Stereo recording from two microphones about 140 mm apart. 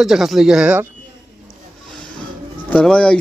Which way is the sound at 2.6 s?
10° left (ahead or behind).